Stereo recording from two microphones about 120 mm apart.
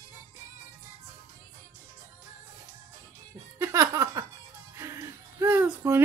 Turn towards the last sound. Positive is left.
turn(degrees=-10)  # may be behind; listen again after turning